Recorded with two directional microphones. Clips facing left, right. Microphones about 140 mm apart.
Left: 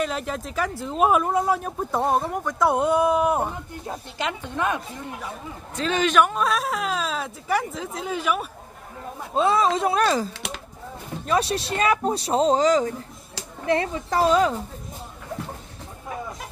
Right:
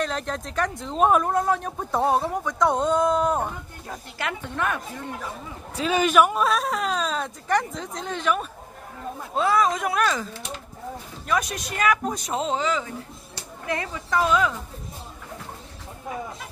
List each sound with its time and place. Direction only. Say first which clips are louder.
0.0 s speech: left 1 dB; 5° left (ahead or behind)
3.8 s speech: left 2 dB; 20° left (ahead or behind)
5.8 s speech: right 1 dB; 10° right (ahead or behind); by 8.5 s 10° left (ahead or behind)
9.3 s speech: left 2 dB; 25° left (ahead or behind)
11.2 s speech: left 3 dB; 30° left (ahead or behind)